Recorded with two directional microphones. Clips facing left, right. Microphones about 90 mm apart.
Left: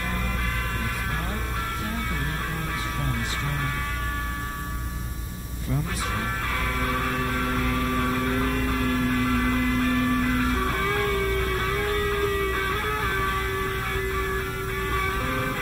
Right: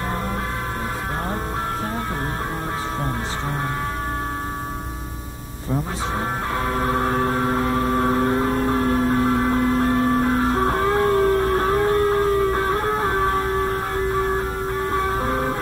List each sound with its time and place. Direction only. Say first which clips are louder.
6.7 s vehicle: right 7 dB; 30° right (ahead or behind)
14.8 s music: right 5 dB; 30° right (ahead or behind)